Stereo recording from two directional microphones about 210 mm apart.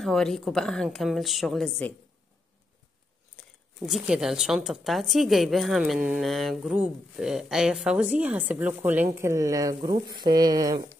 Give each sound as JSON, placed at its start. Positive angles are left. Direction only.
{"t": 0.0, "sound": "a woman's voice", "side_deg": 0}
{"t": 3.3, "sound": "a woman's voice", "side_deg": 0}